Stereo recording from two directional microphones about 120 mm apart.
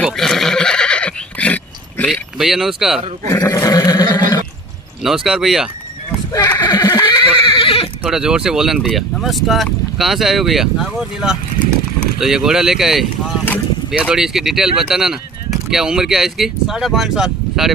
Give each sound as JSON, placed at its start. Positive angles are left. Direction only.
{"t": 0.0, "sound": "neigh", "side_deg": 5}
{"t": 2.0, "sound": "speech", "side_deg": -5}
{"t": 3.6, "sound": "a sound", "side_deg": 35}
{"t": 4.1, "sound": "neigh", "side_deg": 40}
{"t": 5.0, "sound": "speech", "side_deg": -5}
{"t": 6.3, "sound": "neigh", "side_deg": 35}
{"t": 8.0, "sound": "speech", "side_deg": -5}